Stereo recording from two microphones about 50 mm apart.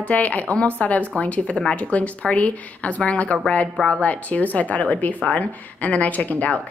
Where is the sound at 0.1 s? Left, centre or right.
Left.